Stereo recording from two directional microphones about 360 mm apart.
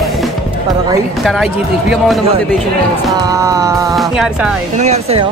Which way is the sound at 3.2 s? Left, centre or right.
Centre.